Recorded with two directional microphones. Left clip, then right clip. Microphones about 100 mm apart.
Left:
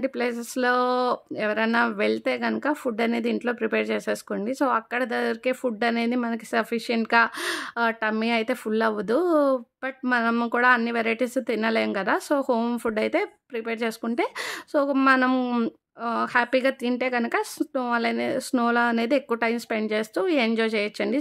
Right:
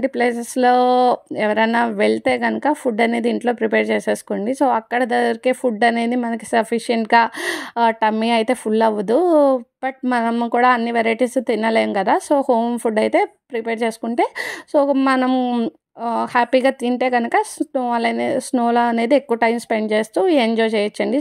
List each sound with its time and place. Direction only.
0.0 s speech: 35° right (ahead or behind)
10.2 s speech: 10° right (ahead or behind)
10.5 s speech: 30° right (ahead or behind); by 15.7 s 10° right (ahead or behind)
16.0 s speech: 25° right (ahead or behind)
17.2 s speech: 20° right (ahead or behind); by 20.5 s 35° right (ahead or behind)
20.5 s speech: 25° right (ahead or behind)